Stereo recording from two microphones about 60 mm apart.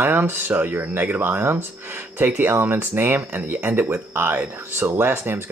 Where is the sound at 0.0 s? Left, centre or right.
Right.